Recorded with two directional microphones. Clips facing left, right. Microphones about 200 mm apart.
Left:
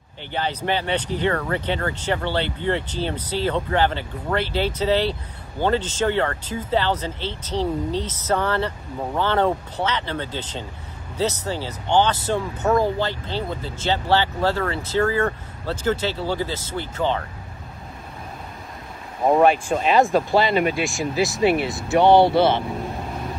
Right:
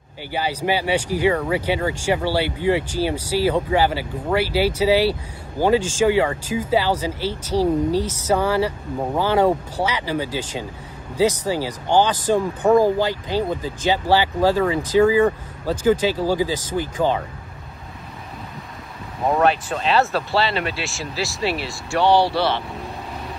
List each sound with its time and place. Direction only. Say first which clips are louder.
0.3 s speech: right 2 dB; 10° right (ahead or behind)
19.3 s speech: left 3 dB; 10° left (ahead or behind)
22.7 s vehicle: left 3 dB; centre (ahead or behind)